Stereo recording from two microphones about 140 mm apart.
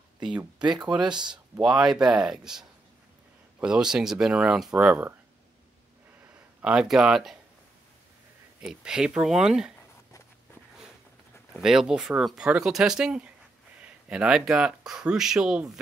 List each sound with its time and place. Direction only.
0.2 s speech: 10° right (ahead or behind)
0.8 s speech: 30° right (ahead or behind)
1.3 s speech: 5° right (ahead or behind)
6.6 s speech: 5° right (ahead or behind)
8.5 s speech: 5° right (ahead or behind)
11.5 s speech: 5° right (ahead or behind)